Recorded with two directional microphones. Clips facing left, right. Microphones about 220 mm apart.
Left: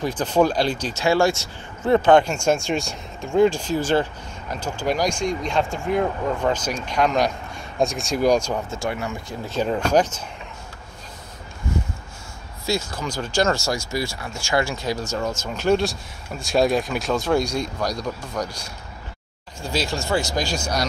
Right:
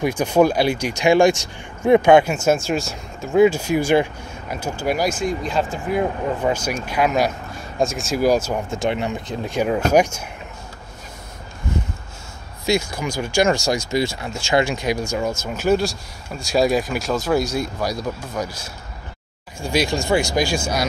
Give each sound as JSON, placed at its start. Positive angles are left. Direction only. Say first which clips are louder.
{"t": 0.0, "sound": "speech", "louder": "right 3 dB", "side_deg": -10}
{"t": 8.7, "sound": "speech", "louder": "right 5 dB", "side_deg": -20}
{"t": 12.6, "sound": "speech", "louder": "right 4 dB", "side_deg": -15}